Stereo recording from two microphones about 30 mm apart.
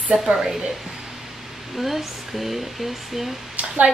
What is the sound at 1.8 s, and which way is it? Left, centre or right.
A woman's voice, centre.